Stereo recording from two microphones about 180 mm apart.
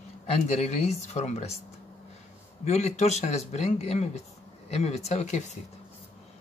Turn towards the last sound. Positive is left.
turn(degrees=40)  # may be behind; listen again after turning